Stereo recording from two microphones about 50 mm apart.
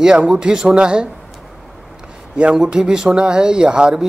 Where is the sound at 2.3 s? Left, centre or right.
Right.